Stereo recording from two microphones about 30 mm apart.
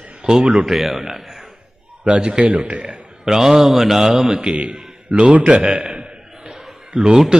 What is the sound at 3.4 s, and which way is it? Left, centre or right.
Speech, centre.